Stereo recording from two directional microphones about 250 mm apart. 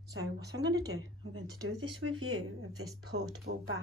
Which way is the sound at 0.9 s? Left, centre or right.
Right.